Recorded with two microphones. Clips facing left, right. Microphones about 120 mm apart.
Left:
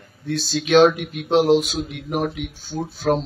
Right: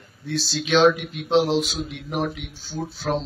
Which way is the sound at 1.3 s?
Centre (ahead or behind).